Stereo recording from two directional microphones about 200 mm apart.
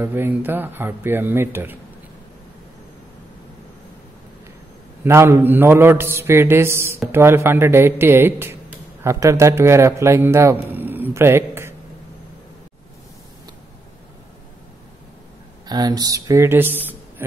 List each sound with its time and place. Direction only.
0.0 s a man's voice: 10° right (ahead or behind)
5.0 s a man's voice: 15° right (ahead or behind)
15.6 s a man's voice: 20° right (ahead or behind)